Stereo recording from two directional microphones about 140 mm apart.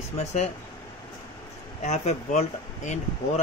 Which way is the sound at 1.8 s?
55° left (ahead or behind).